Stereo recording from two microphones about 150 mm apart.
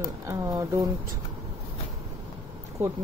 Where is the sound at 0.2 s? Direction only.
20° right (ahead or behind).